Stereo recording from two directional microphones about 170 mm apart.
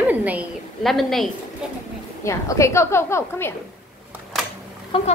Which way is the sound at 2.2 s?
15° left (ahead or behind).